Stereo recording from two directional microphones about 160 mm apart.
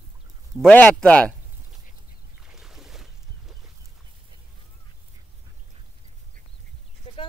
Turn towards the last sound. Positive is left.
turn(degrees=35)  # may be behind; listen again after turning